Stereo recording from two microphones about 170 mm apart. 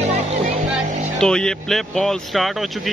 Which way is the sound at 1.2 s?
5° left (ahead or behind).